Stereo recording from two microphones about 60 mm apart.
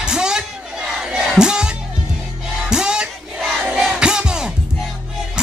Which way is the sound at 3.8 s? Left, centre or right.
Centre.